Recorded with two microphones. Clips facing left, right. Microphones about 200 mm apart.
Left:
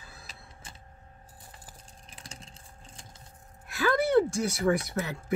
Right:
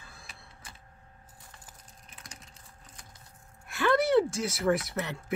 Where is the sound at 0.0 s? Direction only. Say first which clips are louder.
Left 2 dB; 5° left (ahead or behind).